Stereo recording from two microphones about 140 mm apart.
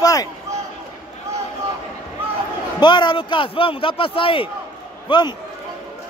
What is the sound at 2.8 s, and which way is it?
Speech, 30° left (ahead or behind).